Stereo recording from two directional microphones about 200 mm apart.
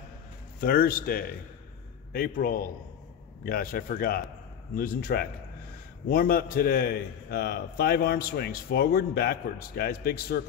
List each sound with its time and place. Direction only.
0.6 s a man's voice: 50° left (ahead or behind)